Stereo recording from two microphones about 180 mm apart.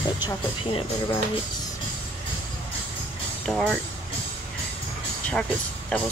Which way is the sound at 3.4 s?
5° left (ahead or behind).